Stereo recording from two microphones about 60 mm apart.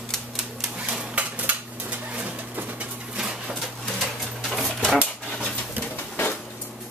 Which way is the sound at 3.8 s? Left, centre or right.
Centre.